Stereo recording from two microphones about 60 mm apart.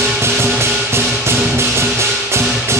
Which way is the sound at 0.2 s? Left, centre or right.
Right.